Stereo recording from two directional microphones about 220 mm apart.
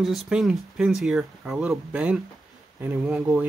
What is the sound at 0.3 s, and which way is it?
Speech, centre (ahead or behind).